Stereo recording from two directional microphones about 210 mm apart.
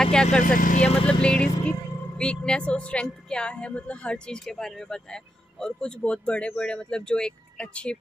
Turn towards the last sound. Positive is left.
turn(degrees=5)  # may be behind; listen again after turning